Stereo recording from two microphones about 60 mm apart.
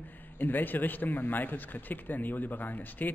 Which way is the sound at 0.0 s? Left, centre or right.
Left.